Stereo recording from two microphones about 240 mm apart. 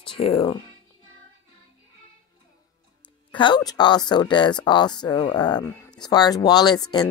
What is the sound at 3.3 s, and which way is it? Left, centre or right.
Speech, centre.